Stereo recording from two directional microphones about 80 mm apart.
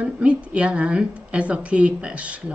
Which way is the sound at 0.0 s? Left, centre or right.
Centre.